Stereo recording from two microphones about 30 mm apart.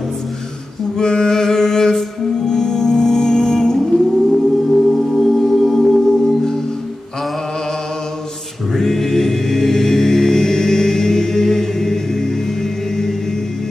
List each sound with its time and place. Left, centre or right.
0.9 s music: left
4.6 s singing bowl: centre
5.2 s music: centre
8.7 s music: centre